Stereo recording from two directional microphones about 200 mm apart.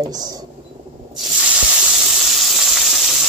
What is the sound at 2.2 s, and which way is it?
Sizzle, centre (ahead or behind).